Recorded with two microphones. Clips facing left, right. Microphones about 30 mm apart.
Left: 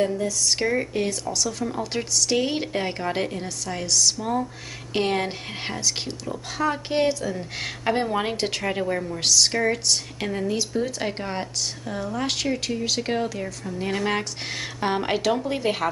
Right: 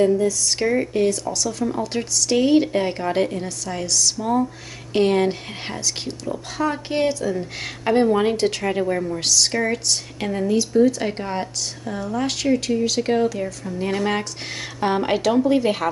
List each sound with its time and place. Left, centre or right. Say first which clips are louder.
0.0 s speech: right 5 dB; centre